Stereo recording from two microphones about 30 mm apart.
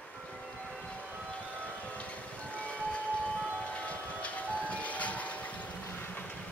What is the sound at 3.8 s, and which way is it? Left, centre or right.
Music, left.